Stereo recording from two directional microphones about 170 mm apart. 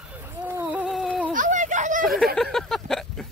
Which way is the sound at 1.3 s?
50° right (ahead or behind).